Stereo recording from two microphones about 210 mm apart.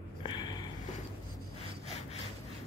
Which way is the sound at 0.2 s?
20° left (ahead or behind).